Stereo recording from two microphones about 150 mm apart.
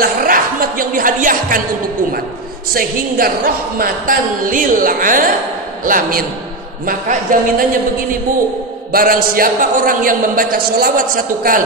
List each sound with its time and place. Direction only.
0.0 s a sound: 75° right (ahead or behind)
2.7 s a man's voice: 75° right (ahead or behind)
8.9 s a man's voice: 75° right (ahead or behind)